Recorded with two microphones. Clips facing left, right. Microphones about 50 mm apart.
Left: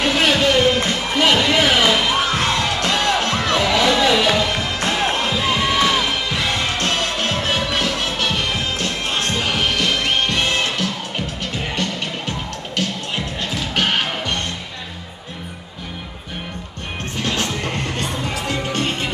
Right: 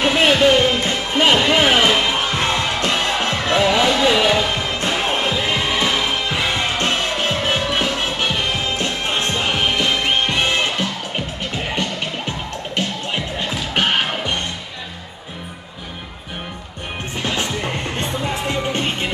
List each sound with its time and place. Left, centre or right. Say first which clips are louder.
0.0 s music: right 2 dB; right
17.2 s music: even; centre